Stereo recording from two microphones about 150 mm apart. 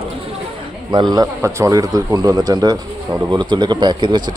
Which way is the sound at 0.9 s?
25° right (ahead or behind).